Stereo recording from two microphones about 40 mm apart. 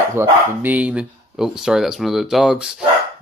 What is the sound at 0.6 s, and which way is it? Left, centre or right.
Speech, right.